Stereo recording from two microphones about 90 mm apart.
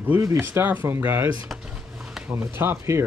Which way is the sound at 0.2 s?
30° right (ahead or behind).